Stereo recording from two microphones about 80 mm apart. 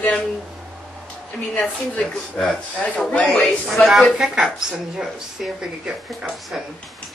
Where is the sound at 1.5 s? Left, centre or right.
Centre.